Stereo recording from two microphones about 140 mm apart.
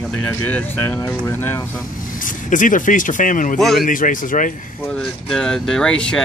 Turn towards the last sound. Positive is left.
turn(degrees=5)  # may be behind; listen again after turning